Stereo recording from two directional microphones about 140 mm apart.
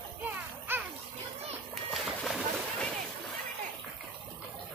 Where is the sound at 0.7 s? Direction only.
15° right (ahead or behind).